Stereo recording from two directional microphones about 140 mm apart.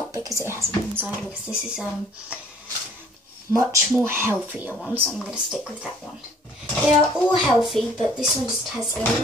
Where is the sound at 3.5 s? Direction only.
20° right (ahead or behind).